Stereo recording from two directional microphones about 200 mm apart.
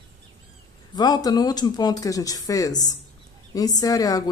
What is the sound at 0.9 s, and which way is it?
Speech, 20° left (ahead or behind).